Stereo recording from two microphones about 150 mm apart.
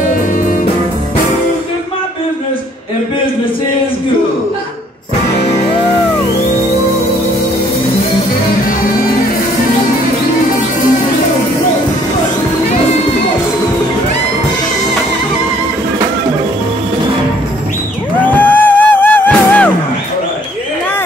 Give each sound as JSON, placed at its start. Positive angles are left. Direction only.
{"t": 0.0, "sound": "music", "side_deg": 65}
{"t": 18.2, "sound": "music", "side_deg": 10}